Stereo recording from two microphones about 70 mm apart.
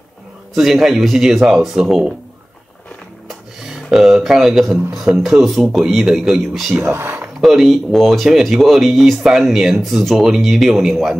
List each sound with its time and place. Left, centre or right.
0.6 s speech: centre
3.3 s speech: centre
6.8 s speech: right
7.3 s speech: centre